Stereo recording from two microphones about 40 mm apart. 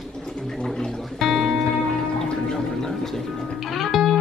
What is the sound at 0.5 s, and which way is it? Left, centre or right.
Gargling, centre.